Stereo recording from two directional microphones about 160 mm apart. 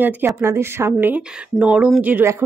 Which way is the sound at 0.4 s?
15° right (ahead or behind).